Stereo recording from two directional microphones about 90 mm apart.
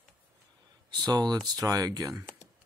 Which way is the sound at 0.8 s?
50° right (ahead or behind).